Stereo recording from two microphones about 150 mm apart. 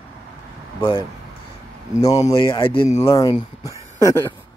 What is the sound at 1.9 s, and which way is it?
Speech, 25° left (ahead or behind).